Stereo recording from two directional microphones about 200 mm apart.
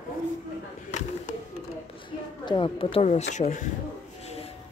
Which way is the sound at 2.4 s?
25° left (ahead or behind).